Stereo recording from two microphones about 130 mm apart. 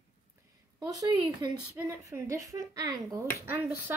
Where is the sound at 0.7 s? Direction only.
30° right (ahead or behind).